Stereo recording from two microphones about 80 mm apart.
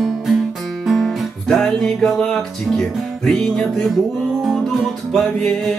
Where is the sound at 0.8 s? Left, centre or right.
Centre.